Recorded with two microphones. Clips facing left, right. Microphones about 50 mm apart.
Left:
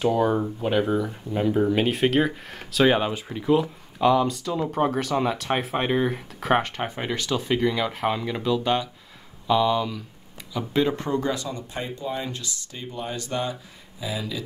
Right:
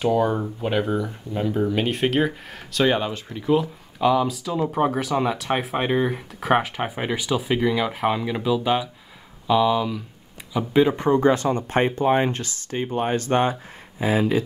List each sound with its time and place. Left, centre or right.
0.0 s speech: centre
3.4 s speech: centre
10.7 s speech: centre
11.1 s speech: right
11.4 s speech: right